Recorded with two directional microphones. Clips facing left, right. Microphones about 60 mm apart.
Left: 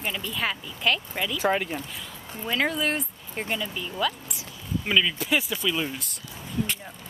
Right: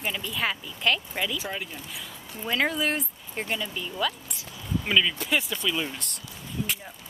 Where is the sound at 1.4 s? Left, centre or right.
Left.